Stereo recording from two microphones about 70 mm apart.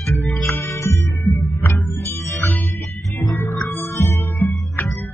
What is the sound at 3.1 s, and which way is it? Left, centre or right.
Music, left.